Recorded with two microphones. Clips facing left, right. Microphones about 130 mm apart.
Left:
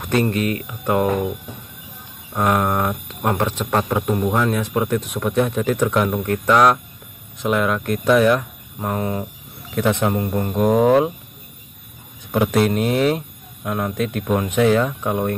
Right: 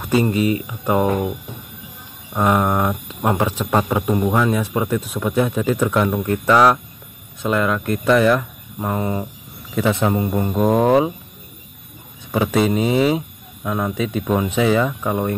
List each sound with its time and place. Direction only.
0.0 s speech: 5° right (ahead or behind)
2.3 s speech: 5° right (ahead or behind)
10.6 s speech: centre (ahead or behind)
12.3 s speech: centre (ahead or behind)